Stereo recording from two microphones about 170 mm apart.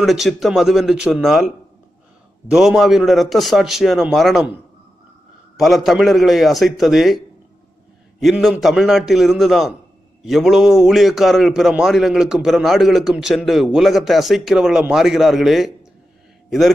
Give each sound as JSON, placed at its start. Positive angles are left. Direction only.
{"t": 0.0, "sound": "a man's voice", "side_deg": 0}
{"t": 2.5, "sound": "a man's voice", "side_deg": -5}
{"t": 5.6, "sound": "a man's voice", "side_deg": 0}
{"t": 8.2, "sound": "a man's voice", "side_deg": 0}